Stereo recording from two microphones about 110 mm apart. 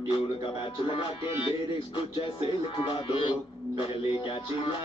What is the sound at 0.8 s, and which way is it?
Music, 50° left (ahead or behind).